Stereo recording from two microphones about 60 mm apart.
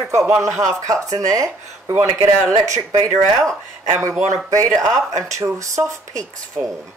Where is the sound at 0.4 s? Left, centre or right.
Right.